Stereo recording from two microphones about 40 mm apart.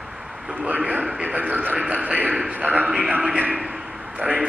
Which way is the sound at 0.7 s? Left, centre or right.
Right.